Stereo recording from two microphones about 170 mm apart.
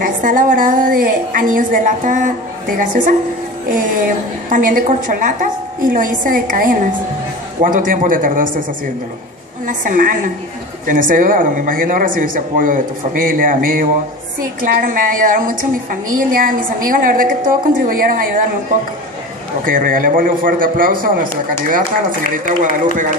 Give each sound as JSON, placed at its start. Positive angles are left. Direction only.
{"t": 0.0, "sound": "speech", "side_deg": -55}
{"t": 4.5, "sound": "speech", "side_deg": -55}
{"t": 9.7, "sound": "a woman's voice", "side_deg": -55}
{"t": 19.6, "sound": "a woman's voice", "side_deg": -55}